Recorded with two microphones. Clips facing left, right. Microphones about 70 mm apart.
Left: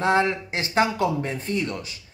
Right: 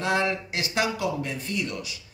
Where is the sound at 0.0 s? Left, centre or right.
Left.